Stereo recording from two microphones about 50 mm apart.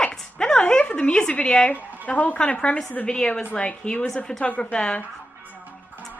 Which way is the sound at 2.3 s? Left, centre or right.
Left.